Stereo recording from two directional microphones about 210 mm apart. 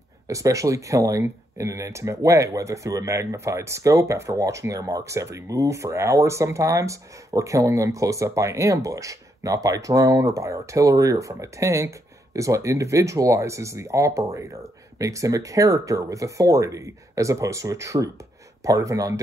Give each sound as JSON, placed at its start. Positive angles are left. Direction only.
{"t": 0.3, "sound": "speech", "side_deg": -15}